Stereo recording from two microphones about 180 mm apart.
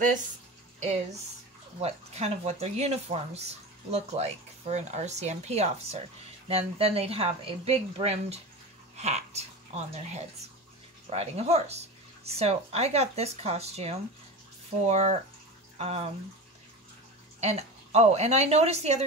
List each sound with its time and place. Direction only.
1.8 s speech: 35° right (ahead or behind)
11.1 s speech: 35° right (ahead or behind)
17.4 s speech: 35° right (ahead or behind)